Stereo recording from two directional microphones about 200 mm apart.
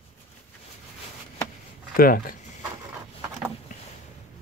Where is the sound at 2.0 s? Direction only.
45° left (ahead or behind).